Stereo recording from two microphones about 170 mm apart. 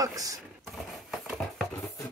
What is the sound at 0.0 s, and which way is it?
Speech, 20° right (ahead or behind).